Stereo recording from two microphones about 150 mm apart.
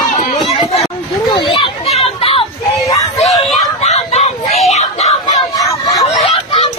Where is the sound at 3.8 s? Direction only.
45° left (ahead or behind).